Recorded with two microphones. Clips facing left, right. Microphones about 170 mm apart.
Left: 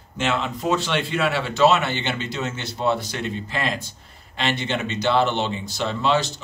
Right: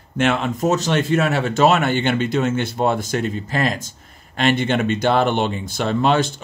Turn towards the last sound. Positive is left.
turn(degrees=-55)  # may be behind; listen again after turning